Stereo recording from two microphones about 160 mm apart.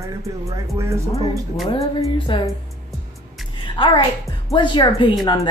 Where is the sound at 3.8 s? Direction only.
30° left (ahead or behind).